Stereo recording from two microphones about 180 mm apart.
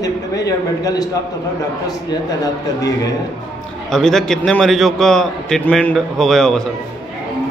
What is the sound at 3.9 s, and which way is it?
A man's voice, 5° left (ahead or behind).